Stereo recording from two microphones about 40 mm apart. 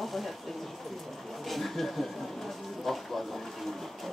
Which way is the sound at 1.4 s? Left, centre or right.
Centre.